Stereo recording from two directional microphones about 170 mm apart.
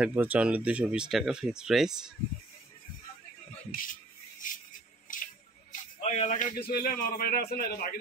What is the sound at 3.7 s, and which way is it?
Speech, 55° left (ahead or behind).